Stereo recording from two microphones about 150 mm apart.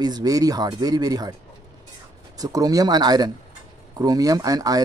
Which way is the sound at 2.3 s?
25° right (ahead or behind).